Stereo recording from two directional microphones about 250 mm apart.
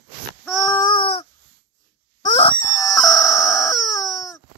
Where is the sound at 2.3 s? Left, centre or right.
Centre.